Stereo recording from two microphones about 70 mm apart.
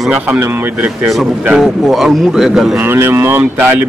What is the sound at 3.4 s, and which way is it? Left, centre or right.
Speech, right.